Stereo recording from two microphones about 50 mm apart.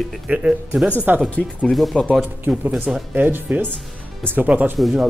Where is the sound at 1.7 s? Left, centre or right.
Centre.